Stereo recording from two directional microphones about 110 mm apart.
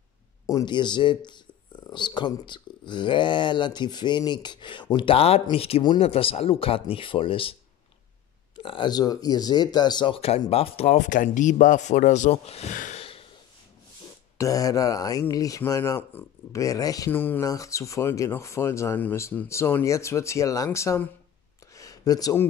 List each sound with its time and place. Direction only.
0.5 s speech: 35° left (ahead or behind); by 7.5 s 55° left (ahead or behind)
8.5 s speech: 50° left (ahead or behind)
10.1 s speech: 65° left (ahead or behind)
11.8 s speech: 90° left; by 13.2 s 65° left (ahead or behind)
14.4 s speech: 30° left (ahead or behind)
17.1 s speech: 20° left (ahead or behind)
17.4 s speech: 30° left (ahead or behind)
21.7 s a sound: 30° left (ahead or behind)